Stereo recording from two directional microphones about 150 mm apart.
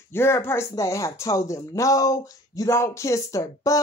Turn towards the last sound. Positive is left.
turn(degrees=20)  # may be behind; listen again after turning